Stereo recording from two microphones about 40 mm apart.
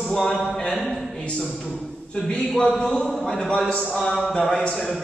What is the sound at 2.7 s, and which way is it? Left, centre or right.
Speech, centre.